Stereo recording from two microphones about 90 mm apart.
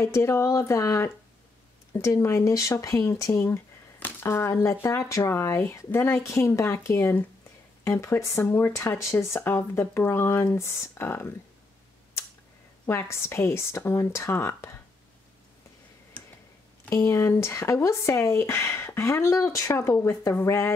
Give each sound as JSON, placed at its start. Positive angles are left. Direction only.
{"t": 0.0, "sound": "speech", "side_deg": 30}
{"t": 3.3, "sound": "speech", "side_deg": 25}
{"t": 12.8, "sound": "speech", "side_deg": 30}
{"t": 16.9, "sound": "speech", "side_deg": 30}